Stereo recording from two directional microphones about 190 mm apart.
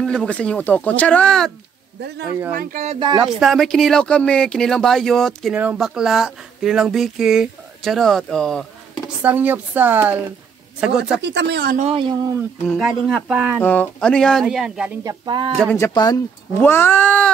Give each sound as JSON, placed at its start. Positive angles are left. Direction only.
{"t": 0.0, "sound": "speech", "side_deg": 5}
{"t": 2.0, "sound": "speech", "side_deg": -60}
{"t": 2.5, "sound": "speech", "side_deg": -45}
{"t": 3.3, "sound": "speech", "side_deg": 0}
{"t": 9.2, "sound": "speech", "side_deg": -10}
{"t": 11.2, "sound": "speech", "side_deg": -65}
{"t": 11.7, "sound": "speech", "side_deg": -35}
{"t": 12.6, "sound": "speech", "side_deg": 0}
{"t": 13.6, "sound": "speech", "side_deg": 10}
{"t": 15.0, "sound": "speech", "side_deg": -20}
{"t": 15.8, "sound": "speech", "side_deg": 20}